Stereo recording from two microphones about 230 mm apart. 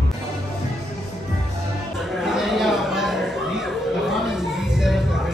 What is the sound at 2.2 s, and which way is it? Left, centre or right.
Chatter, centre.